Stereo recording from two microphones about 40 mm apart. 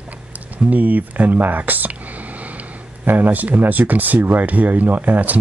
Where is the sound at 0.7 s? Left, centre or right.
Right.